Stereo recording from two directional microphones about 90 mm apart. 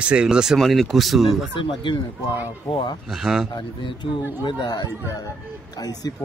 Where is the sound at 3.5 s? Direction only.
55° left (ahead or behind).